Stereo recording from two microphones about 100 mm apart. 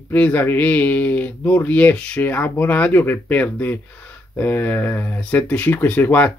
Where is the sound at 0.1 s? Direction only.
15° left (ahead or behind).